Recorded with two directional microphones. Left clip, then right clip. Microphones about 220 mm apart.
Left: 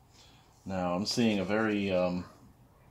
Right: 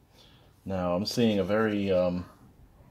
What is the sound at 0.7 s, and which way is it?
Speech, 30° right (ahead or behind).